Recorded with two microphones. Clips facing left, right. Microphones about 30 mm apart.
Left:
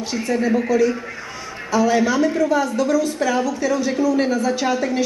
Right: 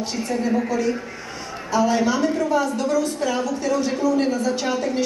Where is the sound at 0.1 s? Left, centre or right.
Left.